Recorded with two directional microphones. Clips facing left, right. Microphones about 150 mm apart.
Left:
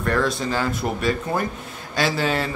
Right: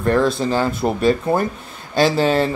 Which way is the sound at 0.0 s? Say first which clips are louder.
Right 5 dB; 25° right (ahead or behind).